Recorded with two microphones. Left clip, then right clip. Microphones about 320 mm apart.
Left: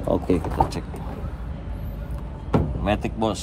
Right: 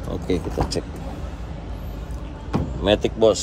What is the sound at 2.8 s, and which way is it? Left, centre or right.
Speech, centre.